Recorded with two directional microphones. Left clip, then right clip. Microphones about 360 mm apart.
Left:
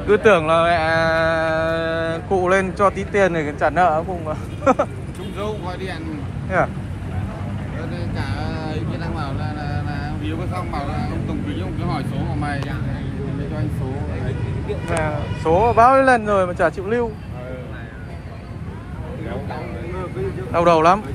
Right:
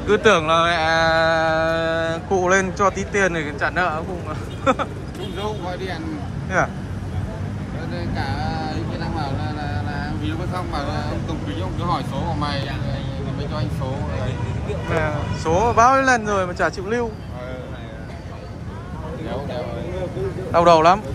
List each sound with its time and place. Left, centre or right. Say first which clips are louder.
0.1 s speech: left 1 dB; centre
6.5 s speech: left 1 dB; centre
8.2 s speech: right 3 dB; centre
14.9 s speech: right 1 dB; centre
20.5 s speech: right 1 dB; centre